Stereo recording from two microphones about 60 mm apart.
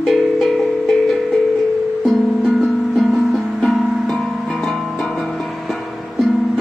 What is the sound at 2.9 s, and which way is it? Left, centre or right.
Music, centre.